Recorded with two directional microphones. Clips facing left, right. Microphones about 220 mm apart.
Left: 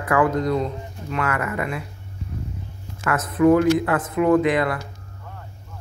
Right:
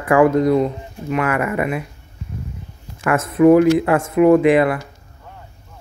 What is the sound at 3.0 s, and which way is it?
Speech, 25° right (ahead or behind).